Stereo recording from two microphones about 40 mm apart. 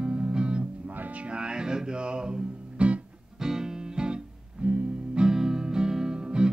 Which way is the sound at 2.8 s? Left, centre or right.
Right.